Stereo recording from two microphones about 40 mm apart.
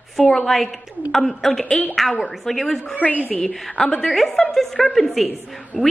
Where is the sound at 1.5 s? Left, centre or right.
Centre.